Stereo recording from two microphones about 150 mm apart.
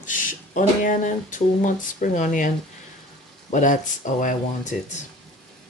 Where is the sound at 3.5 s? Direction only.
60° left (ahead or behind).